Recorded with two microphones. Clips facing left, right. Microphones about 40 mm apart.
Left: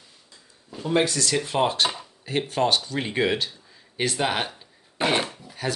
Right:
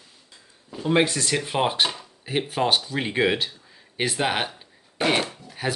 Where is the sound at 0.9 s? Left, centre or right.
Right.